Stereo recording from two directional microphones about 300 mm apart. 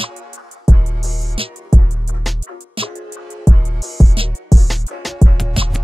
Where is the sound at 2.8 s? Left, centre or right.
Centre.